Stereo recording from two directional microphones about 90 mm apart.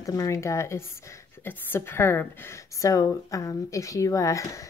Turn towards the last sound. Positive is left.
turn(degrees=35)  # may be behind; listen again after turning